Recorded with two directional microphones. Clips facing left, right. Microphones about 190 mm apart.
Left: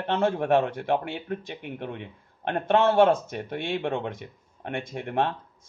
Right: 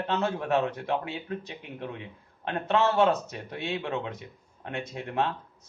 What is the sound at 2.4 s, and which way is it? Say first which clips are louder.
A man's voice: left 4 dB; 55° left (ahead or behind).